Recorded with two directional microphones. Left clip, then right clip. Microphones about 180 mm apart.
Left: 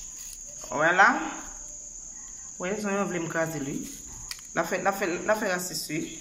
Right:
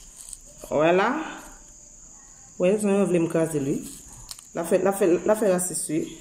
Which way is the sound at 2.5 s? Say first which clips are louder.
Right 8 dB; 20° right (ahead or behind).